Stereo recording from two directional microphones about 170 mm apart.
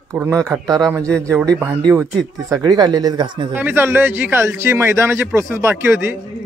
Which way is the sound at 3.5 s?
10° right (ahead or behind).